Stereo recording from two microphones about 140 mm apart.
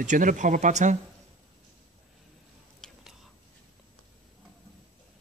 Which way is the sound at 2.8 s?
5° left (ahead or behind).